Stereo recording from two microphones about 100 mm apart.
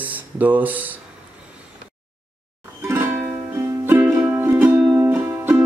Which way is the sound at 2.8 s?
25° right (ahead or behind).